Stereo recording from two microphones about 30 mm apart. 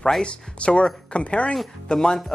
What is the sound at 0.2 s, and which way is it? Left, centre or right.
Speech, left.